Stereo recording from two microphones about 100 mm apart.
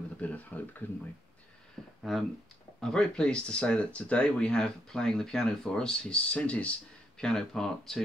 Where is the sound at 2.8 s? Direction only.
5° left (ahead or behind).